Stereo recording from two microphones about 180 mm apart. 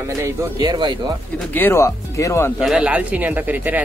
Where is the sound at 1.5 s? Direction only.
15° left (ahead or behind).